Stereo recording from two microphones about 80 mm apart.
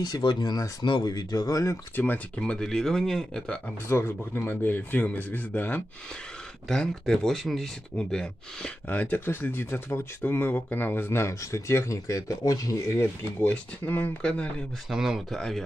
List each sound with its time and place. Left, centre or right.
0.2 s speech: left
2.0 s speech: left
3.9 s speech: left
6.7 s speech: centre
8.8 s speech: left
13.4 s speech: left
14.9 s speech: centre